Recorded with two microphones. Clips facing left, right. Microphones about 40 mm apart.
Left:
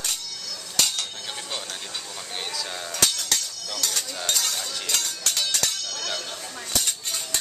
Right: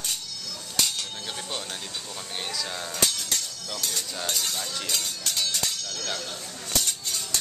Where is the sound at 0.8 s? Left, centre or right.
Left.